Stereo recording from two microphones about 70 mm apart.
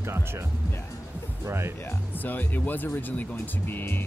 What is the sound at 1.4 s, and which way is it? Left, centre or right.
Speech, right.